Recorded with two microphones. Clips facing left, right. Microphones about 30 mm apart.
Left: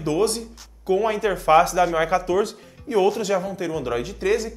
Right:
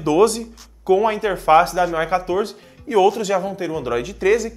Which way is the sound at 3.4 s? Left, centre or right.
Right.